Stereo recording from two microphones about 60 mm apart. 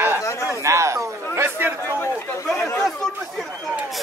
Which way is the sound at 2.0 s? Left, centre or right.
Left.